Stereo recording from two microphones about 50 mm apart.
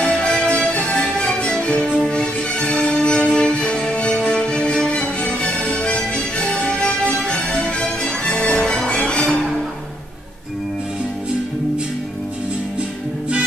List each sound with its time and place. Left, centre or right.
0.0 s music: centre